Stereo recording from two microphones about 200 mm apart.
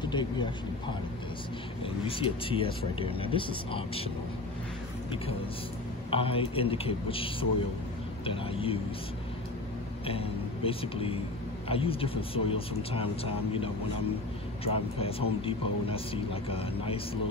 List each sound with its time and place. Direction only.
0.0 s a man's voice: 25° left (ahead or behind)
2.0 s speech: 25° left (ahead or behind)
6.0 s speech: 25° left (ahead or behind)
10.0 s speech: 30° left (ahead or behind)